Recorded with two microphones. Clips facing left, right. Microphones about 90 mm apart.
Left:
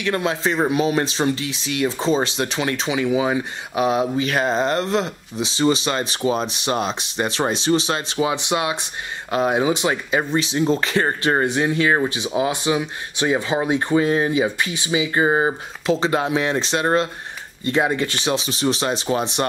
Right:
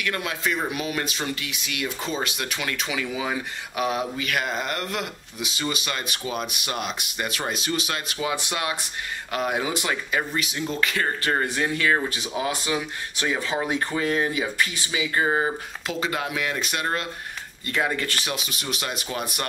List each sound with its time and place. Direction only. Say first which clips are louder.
0.0 s speech: left 6 dB; 30° left (ahead or behind)